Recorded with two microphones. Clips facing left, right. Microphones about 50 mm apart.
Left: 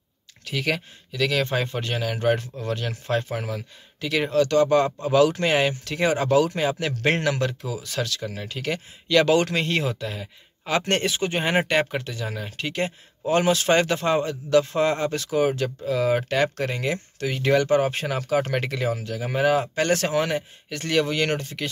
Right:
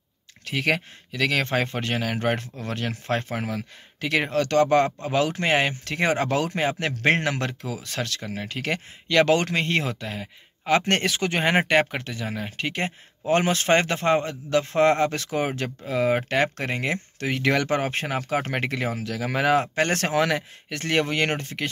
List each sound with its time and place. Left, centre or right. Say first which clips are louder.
0.5 s speech: right 2 dB; right
5.9 s speech: left 1 dB; right
7.3 s speech: left 3 dB; right
10.9 s speech: even; right
11.5 s speech: right 1 dB; right
14.7 s speech: right 3 dB; right
17.8 s speech: left 1 dB; right
19.0 s speech: even; right
19.8 s speech: left 1 dB; right
20.2 s speech: right 1 dB; right
20.7 s speech: left 1 dB; right